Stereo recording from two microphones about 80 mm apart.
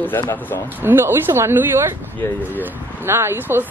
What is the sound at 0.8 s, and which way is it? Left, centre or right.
Speech, right.